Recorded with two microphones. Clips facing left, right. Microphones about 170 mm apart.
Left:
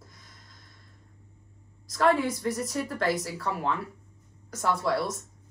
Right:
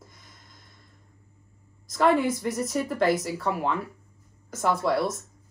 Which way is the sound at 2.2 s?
20° right (ahead or behind).